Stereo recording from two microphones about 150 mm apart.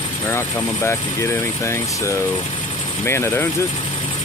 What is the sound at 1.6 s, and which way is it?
Speech, 20° left (ahead or behind).